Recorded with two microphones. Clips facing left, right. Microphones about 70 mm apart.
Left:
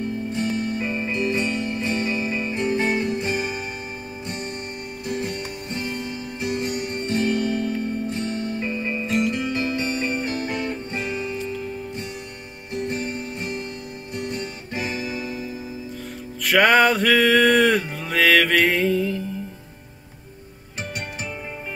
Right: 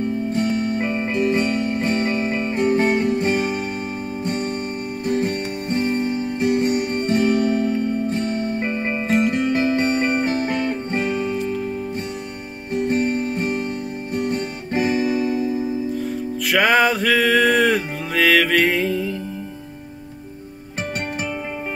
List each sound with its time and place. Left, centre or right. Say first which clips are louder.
0.3 s music: right 3 dB; right
12.7 s music: right 7 dB; right
16.4 s music: left 1 dB; centre